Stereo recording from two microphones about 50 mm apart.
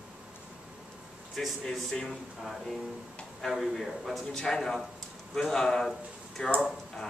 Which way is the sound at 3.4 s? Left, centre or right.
Centre.